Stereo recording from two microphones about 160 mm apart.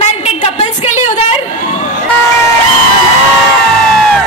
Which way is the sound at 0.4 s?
50° left (ahead or behind).